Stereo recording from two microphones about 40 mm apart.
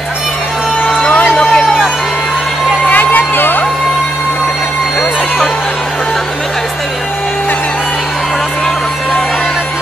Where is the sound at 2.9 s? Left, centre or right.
Left.